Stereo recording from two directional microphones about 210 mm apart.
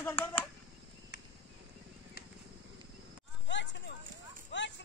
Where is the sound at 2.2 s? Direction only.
50° left (ahead or behind).